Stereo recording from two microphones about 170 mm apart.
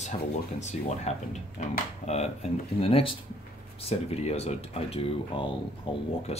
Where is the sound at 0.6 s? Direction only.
40° left (ahead or behind).